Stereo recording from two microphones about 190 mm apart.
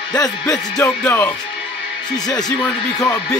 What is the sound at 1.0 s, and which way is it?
Music, 10° left (ahead or behind).